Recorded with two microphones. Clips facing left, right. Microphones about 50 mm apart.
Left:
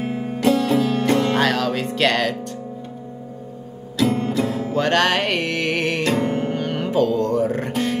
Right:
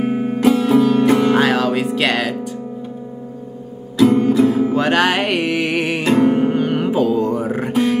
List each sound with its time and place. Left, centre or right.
0.0 s music: right
0.4 s music: centre
4.2 s music: centre